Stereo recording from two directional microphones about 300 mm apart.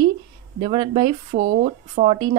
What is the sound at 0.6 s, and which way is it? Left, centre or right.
Speech, centre.